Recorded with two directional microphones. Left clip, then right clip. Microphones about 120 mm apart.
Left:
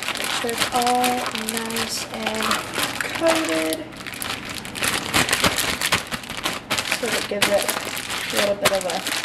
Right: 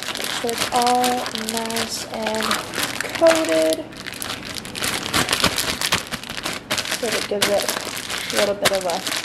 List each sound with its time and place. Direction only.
0.7 s speech: 15° right (ahead or behind)
4.9 s a sound: 15° right (ahead or behind)
6.7 s speech: 15° right (ahead or behind)